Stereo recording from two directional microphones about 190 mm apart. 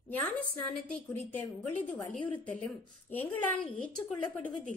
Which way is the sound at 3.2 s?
10° left (ahead or behind).